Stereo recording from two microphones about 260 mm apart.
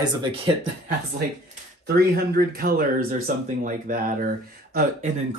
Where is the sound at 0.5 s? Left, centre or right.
Centre.